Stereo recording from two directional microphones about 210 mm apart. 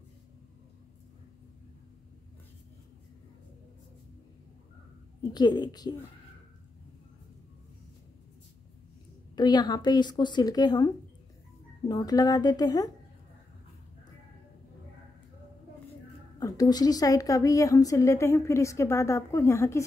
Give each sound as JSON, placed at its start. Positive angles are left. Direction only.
{"t": 5.3, "sound": "speech", "side_deg": 20}
{"t": 9.3, "sound": "speech", "side_deg": 20}
{"t": 11.9, "sound": "a woman's voice", "side_deg": 15}
{"t": 16.3, "sound": "a woman's voice", "side_deg": 15}